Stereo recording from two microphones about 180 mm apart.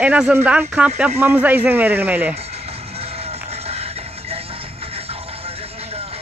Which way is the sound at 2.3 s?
35° right (ahead or behind).